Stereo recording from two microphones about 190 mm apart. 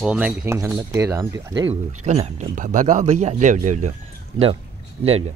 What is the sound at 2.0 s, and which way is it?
Speech, 35° right (ahead or behind).